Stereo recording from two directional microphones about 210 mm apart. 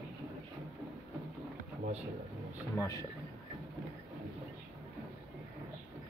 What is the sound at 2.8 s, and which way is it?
Speech, 15° left (ahead or behind).